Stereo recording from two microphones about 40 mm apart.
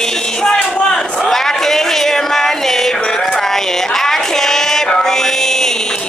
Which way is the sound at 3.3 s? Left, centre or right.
Centre.